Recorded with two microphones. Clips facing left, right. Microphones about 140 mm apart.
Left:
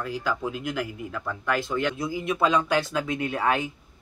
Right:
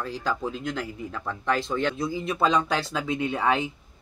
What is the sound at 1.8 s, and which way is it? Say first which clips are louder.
Speech: right 1 dB; 30° right (ahead or behind).